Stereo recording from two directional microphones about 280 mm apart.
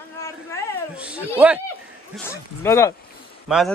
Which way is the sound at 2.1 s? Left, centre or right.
Centre.